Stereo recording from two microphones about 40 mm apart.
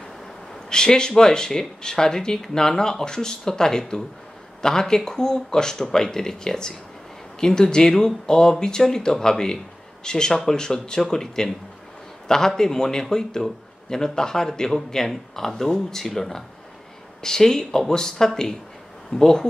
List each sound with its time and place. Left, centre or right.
0.7 s a man's voice: centre